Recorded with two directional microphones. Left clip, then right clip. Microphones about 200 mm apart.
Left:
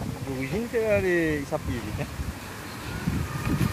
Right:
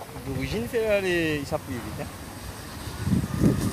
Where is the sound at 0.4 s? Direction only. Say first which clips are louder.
Even; 20° right (ahead or behind).